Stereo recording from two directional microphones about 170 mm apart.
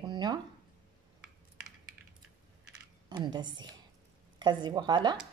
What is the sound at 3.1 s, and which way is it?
A woman's voice, 25° right (ahead or behind).